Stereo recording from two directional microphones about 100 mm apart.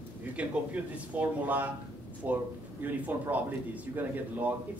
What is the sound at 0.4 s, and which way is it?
Speech, 10° right (ahead or behind).